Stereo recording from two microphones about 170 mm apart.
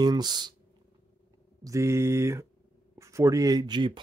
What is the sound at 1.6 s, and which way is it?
Speech, 20° right (ahead or behind).